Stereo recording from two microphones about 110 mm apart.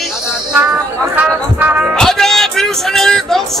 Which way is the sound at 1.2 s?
15° right (ahead or behind).